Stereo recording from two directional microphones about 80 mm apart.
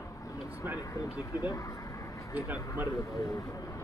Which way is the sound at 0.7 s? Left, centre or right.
Left.